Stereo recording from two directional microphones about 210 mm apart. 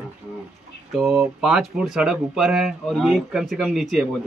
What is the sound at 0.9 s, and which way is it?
Speech, centre (ahead or behind).